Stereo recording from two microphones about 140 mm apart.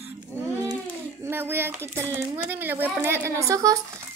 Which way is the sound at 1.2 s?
15° right (ahead or behind).